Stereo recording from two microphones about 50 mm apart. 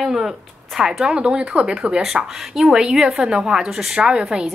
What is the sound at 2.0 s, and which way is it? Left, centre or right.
A woman's voice, centre.